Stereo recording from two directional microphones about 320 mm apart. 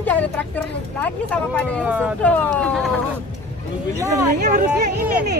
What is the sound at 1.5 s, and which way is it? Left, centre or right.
Speech, centre.